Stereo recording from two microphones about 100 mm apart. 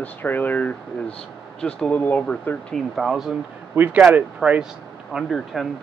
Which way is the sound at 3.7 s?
15° right (ahead or behind).